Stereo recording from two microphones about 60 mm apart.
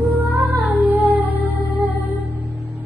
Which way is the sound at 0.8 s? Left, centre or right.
Right.